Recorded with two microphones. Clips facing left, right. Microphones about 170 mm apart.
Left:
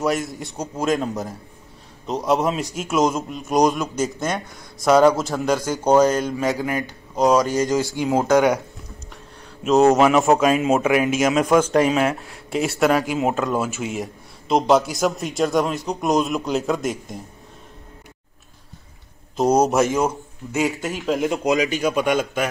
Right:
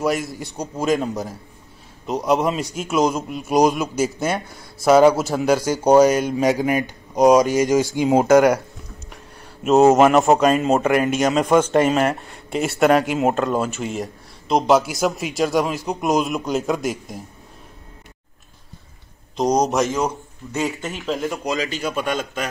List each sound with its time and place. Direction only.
0.0 s a man's voice: centre (ahead or behind); by 8.3 s 20° right (ahead or behind)
8.3 s a man's voice: centre (ahead or behind)
9.1 s a sound: centre (ahead or behind)
9.9 s a man's voice: centre (ahead or behind)
19.3 s a man's voice: 5° left (ahead or behind)
21.0 s speech: 15° left (ahead or behind)